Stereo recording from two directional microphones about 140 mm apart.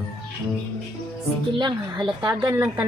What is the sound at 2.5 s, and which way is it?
Speech, 20° right (ahead or behind).